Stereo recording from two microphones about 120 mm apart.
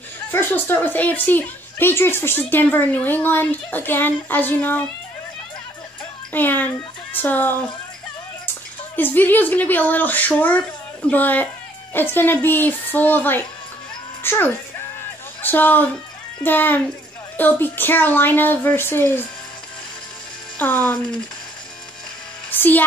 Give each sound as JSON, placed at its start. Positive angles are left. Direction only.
{"t": 0.3, "sound": "a woman's voice", "side_deg": 20}
{"t": 6.3, "sound": "speech", "side_deg": 15}
{"t": 8.9, "sound": "a woman's voice", "side_deg": 15}
{"t": 20.5, "sound": "speech", "side_deg": 15}
{"t": 22.5, "sound": "speech", "side_deg": 15}